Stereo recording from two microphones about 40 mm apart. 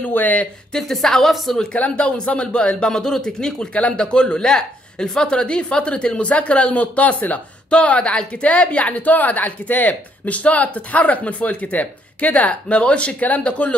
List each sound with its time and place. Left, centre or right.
0.0 s speech: left
0.7 s speech: centre
1.8 s a woman's voice: left
2.9 s speech: centre; by 7.3 s left
7.7 s a woman's voice: left